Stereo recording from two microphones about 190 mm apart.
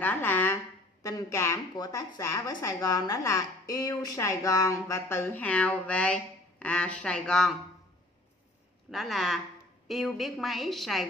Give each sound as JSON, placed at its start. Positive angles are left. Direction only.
{"t": 0.0, "sound": "a sound", "side_deg": 10}
{"t": 1.0, "sound": "a woman's voice", "side_deg": 15}
{"t": 8.9, "sound": "a woman's voice", "side_deg": 0}